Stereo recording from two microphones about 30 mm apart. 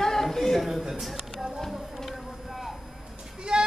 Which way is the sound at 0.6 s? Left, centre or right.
Centre.